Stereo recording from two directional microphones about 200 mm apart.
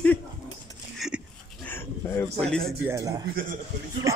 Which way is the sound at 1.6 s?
10° left (ahead or behind).